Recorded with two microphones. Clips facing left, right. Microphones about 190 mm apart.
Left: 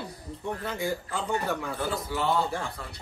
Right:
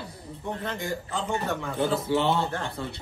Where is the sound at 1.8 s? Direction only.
25° right (ahead or behind).